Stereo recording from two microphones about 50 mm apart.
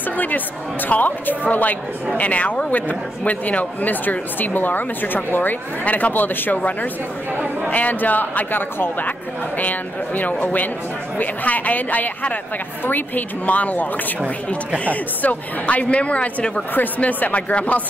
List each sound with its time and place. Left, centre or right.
0.8 s a woman's voice: left
14.9 s a woman's voice: left